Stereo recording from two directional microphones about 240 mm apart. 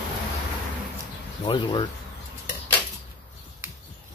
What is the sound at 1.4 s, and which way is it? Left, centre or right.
Speech, centre.